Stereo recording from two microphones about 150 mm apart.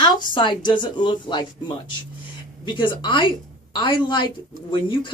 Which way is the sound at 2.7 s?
30° left (ahead or behind).